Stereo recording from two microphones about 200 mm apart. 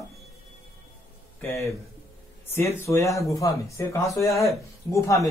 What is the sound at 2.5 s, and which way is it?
Speech, 15° left (ahead or behind).